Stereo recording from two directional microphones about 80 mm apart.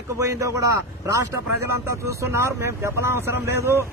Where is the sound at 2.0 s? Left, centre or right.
Right.